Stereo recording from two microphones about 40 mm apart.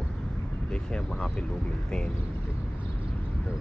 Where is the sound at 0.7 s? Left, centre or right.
Left.